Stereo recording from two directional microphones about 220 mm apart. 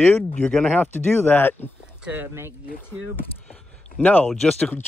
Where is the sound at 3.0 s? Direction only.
65° right (ahead or behind).